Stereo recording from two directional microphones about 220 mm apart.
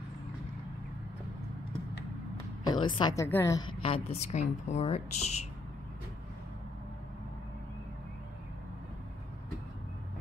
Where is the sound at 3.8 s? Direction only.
25° left (ahead or behind).